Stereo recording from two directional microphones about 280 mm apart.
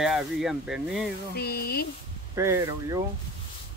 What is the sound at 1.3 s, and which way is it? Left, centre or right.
Speech, left.